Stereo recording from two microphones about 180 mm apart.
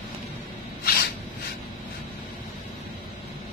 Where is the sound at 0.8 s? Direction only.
55° left (ahead or behind).